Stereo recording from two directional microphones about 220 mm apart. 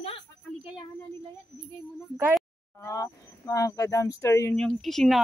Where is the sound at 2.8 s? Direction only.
15° left (ahead or behind).